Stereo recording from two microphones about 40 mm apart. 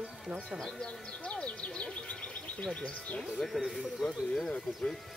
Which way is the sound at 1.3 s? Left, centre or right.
Left.